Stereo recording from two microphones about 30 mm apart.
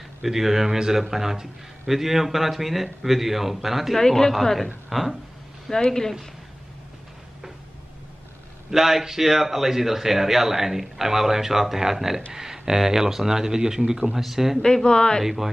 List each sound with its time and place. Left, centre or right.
0.2 s speech: centre
4.0 s a woman's voice: centre
4.3 s a woman's voice: centre
4.8 s speech: centre
5.9 s speech: centre
8.6 s speech: centre
14.6 s speech: left
15.2 s speech: centre